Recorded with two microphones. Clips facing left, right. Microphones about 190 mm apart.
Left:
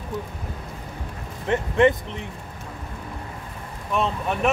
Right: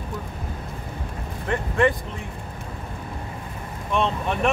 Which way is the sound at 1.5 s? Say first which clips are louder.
Left 3 dB; 20° left (ahead or behind).